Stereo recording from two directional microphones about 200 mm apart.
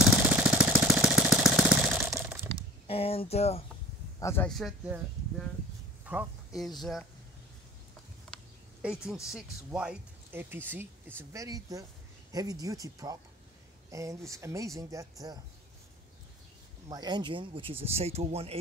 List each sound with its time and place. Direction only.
0.0 s jackhammer: 5° right (ahead or behind)
2.9 s speech: 30° left (ahead or behind)
4.2 s speech: 15° left (ahead or behind)
4.5 s speech: centre (ahead or behind)
6.0 s speech: 5° right (ahead or behind)
9.0 s speech: 5° right (ahead or behind)
16.9 s speech: 20° right (ahead or behind)